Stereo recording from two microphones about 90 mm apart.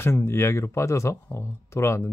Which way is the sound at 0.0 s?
30° left (ahead or behind).